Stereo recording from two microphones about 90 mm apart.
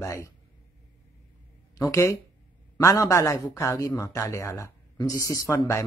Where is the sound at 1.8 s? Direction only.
35° left (ahead or behind).